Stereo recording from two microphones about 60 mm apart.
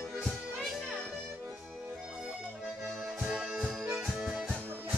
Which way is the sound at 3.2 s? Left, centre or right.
Centre.